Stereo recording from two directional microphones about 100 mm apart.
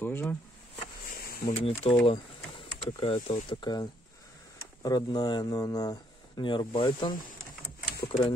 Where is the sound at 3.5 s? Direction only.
45° left (ahead or behind).